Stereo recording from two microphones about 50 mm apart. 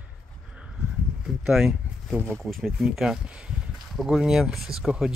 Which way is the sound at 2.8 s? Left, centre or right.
Centre.